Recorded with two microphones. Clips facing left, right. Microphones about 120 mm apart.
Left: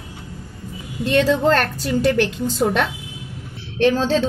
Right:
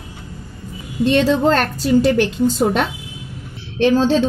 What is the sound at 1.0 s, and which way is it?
A woman's voice, 30° right (ahead or behind).